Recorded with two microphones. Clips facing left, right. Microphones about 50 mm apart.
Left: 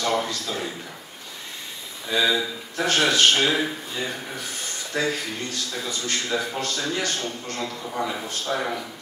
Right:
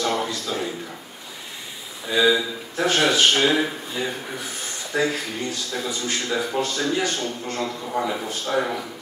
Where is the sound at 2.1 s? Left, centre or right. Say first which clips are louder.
Right 3 dB; centre.